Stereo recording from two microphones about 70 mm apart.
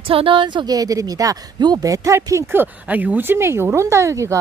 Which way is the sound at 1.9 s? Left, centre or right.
Right.